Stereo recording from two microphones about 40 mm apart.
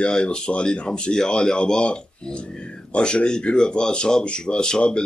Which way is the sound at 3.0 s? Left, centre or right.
Left.